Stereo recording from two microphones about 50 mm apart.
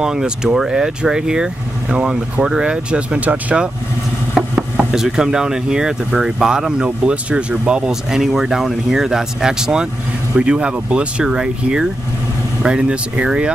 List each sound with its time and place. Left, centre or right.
0.0 s speech: centre
3.2 s speech: right
4.9 s speech: centre